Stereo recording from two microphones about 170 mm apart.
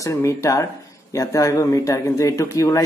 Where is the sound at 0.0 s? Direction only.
20° left (ahead or behind).